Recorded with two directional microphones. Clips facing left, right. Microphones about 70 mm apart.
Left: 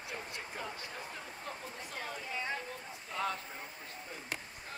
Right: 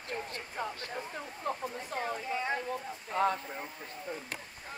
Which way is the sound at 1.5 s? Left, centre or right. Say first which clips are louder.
Right 11 dB; right.